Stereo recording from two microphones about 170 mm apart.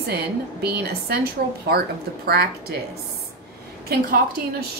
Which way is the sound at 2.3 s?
70° right (ahead or behind).